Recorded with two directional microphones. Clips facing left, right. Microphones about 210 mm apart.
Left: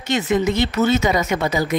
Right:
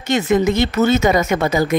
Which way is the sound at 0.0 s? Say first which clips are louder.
Right 3 dB; 50° right (ahead or behind).